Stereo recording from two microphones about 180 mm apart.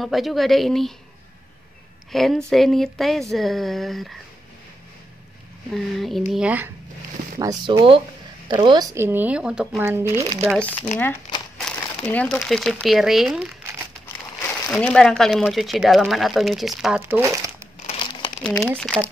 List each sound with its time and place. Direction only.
0.0 s speech: centre (ahead or behind)
2.1 s speech: centre (ahead or behind)
5.7 s speech: centre (ahead or behind)
7.3 s speech: 20° right (ahead or behind)
11.6 s speech: 5° left (ahead or behind)
14.7 s speech: 5° left (ahead or behind)
17.0 s speech: 15° right (ahead or behind)
17.8 s crumpling: 30° left (ahead or behind)
18.6 s speech: 5° left (ahead or behind)